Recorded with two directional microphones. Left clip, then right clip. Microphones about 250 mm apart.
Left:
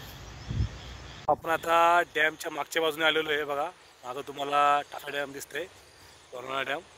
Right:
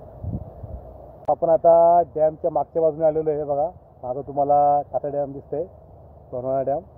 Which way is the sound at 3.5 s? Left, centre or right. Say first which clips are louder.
Right 8 dB; left.